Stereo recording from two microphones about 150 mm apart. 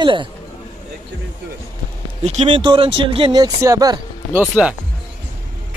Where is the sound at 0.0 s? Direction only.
30° right (ahead or behind).